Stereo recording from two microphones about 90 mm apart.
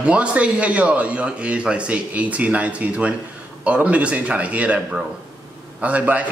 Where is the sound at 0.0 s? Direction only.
15° right (ahead or behind).